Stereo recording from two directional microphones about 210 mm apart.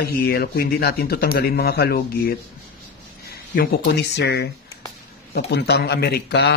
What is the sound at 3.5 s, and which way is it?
Speech, 50° left (ahead or behind).